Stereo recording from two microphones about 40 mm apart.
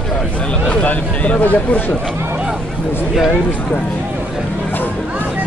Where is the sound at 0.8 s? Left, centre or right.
Left.